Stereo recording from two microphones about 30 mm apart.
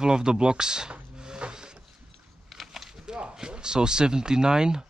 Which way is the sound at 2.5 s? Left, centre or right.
Centre.